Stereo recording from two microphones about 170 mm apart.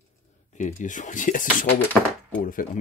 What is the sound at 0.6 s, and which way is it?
Speech, 45° left (ahead or behind).